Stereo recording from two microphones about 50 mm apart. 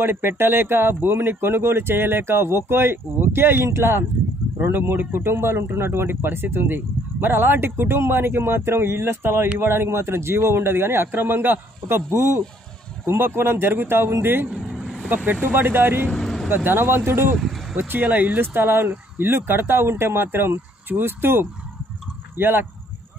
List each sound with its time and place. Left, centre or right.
0.0 s speech: right
4.6 s speech: right
13.0 s speech: right
14.5 s vehicle: centre
15.1 s speech: right
16.1 s vehicle: centre
16.4 s speech: right
18.0 s speech: right